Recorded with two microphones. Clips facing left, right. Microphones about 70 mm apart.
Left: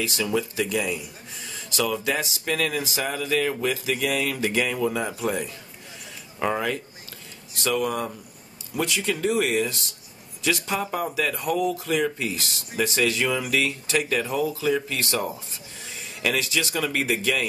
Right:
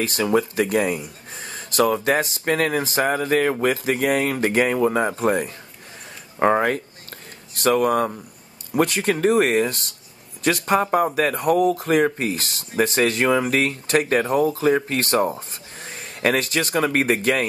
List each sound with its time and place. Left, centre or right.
0.0 s speech: right